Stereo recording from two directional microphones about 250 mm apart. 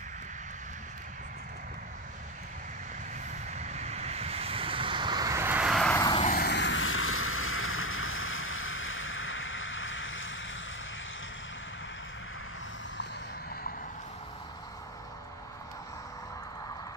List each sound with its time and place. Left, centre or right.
3.5 s vehicle: right; by 6.0 s centre
6.2 s vehicle: left